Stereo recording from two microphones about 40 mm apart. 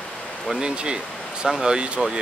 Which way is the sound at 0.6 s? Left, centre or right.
Right.